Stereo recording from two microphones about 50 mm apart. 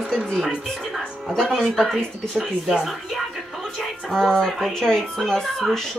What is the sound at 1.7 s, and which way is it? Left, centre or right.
Speech, centre.